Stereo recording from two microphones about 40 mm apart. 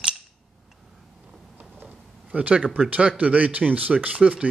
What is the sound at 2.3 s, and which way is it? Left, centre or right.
Speech, right.